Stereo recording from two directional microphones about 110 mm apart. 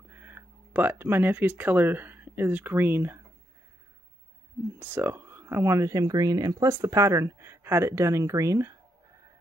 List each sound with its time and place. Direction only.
0.1 s speech: 15° right (ahead or behind)
4.7 s speech: 20° right (ahead or behind)